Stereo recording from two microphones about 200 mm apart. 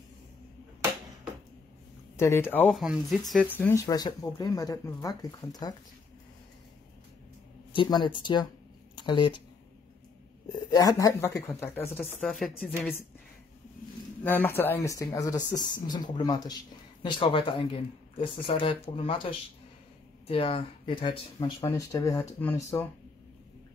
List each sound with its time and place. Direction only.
2.1 s speech: 15° left (ahead or behind)
7.7 s speech: 25° left (ahead or behind)
10.5 s speech: 20° left (ahead or behind); by 12.4 s centre (ahead or behind)
14.2 s speech: 10° left (ahead or behind); by 19.2 s 25° left (ahead or behind)
20.2 s speech: 30° left (ahead or behind); by 22.8 s 10° left (ahead or behind)